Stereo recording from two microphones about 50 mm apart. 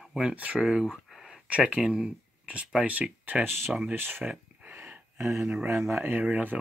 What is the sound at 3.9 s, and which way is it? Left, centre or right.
Speech, right.